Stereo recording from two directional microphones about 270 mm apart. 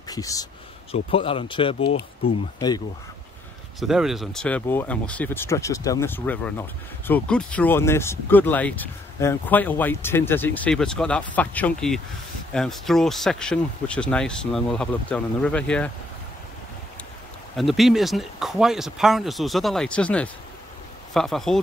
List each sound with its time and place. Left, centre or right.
0.1 s speech: centre
3.8 s speech: centre
17.6 s speech: centre